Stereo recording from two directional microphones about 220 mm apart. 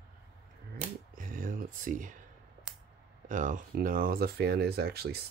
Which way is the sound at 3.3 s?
35° right (ahead or behind).